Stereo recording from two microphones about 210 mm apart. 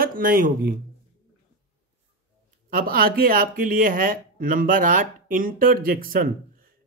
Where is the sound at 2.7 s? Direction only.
45° right (ahead or behind).